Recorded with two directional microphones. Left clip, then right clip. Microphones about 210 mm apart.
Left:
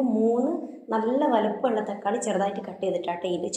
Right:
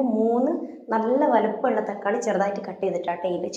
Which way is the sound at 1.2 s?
5° right (ahead or behind).